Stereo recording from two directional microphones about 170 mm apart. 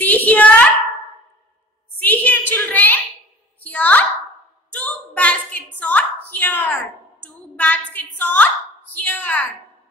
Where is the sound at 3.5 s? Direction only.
10° left (ahead or behind).